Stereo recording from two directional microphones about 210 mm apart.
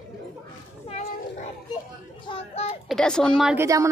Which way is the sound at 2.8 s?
5° left (ahead or behind).